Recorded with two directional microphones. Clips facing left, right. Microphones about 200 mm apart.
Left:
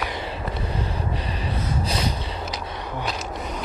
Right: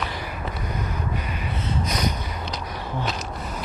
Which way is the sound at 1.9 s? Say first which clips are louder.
Right 1 dB; 30° left (ahead or behind).